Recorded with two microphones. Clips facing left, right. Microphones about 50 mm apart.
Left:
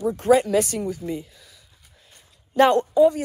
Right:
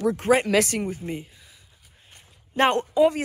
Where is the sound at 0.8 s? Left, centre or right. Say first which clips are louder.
Left 2 dB; right.